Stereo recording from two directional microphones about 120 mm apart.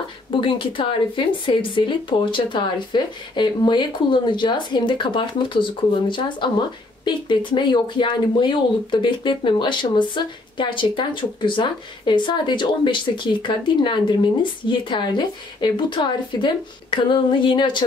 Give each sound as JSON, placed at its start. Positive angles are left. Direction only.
{"t": 0.3, "sound": "speech", "side_deg": 45}